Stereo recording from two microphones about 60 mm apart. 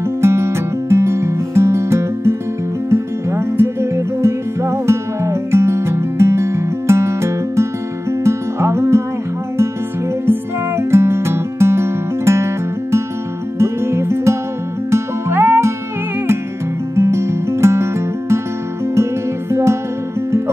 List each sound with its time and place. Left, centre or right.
0.2 s music: right
10.2 s music: right
13.6 s music: right
16.9 s music: right
19.5 s music: right